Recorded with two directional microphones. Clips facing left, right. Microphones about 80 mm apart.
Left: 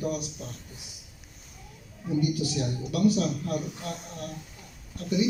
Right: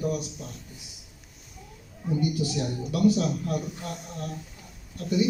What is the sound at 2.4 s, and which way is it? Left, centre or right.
A man's voice, right.